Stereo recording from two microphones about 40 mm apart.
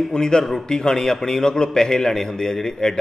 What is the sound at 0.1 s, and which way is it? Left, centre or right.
A man's voice, centre.